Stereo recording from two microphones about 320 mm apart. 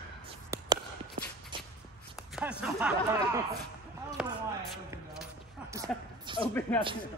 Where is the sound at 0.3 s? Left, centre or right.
Centre.